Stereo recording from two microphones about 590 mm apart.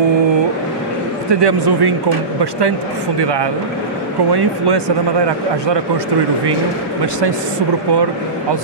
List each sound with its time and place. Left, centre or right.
1.4 s a man's voice: right
3.2 s a man's voice: right